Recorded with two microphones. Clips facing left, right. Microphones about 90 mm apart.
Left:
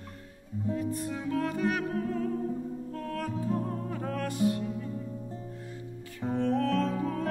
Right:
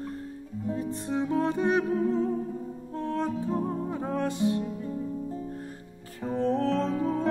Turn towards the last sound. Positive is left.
turn(degrees=-25)  # may be behind; listen again after turning